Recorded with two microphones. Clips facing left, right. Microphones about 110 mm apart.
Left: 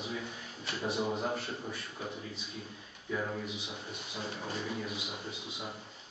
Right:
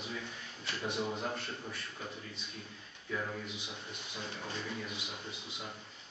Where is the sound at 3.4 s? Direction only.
Centre (ahead or behind).